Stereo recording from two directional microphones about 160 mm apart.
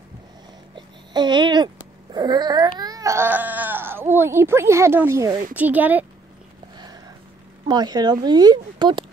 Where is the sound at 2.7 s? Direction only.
25° right (ahead or behind).